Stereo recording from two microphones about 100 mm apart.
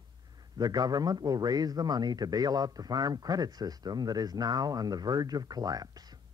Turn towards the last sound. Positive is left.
turn(degrees=-40)  # may be behind; listen again after turning